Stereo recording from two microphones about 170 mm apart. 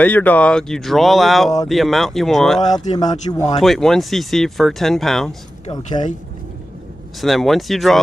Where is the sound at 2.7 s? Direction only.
25° left (ahead or behind).